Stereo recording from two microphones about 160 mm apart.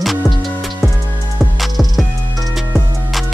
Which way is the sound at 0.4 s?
Centre (ahead or behind).